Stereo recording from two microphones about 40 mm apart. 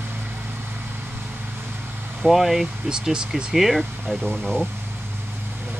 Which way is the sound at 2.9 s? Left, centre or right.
Centre.